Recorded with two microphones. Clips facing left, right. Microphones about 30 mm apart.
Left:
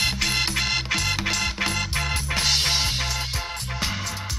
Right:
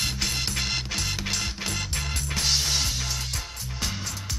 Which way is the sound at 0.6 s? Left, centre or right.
Centre.